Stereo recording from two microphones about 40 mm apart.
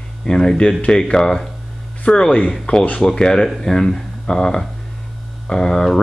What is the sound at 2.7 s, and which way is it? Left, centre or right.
Speech, left.